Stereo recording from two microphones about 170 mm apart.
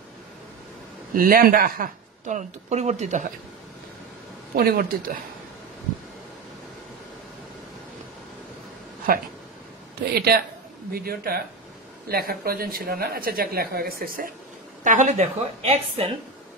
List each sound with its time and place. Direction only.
1.1 s speech: 60° right (ahead or behind); by 3.3 s 45° right (ahead or behind)
4.6 s speech: 60° right (ahead or behind)
10.1 s a man's voice: 65° right (ahead or behind)
14.8 s speech: 45° right (ahead or behind)